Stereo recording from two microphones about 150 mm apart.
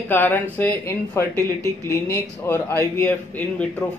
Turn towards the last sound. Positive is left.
turn(degrees=10)  # may be behind; listen again after turning